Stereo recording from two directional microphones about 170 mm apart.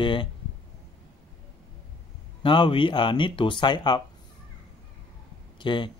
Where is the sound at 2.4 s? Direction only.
30° left (ahead or behind).